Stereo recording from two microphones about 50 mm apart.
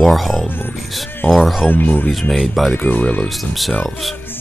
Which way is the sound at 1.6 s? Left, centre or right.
Left.